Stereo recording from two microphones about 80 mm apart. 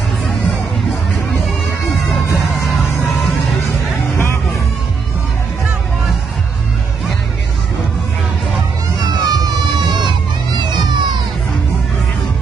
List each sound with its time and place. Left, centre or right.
2.5 s music: centre
9.2 s music: right
10.6 s music: right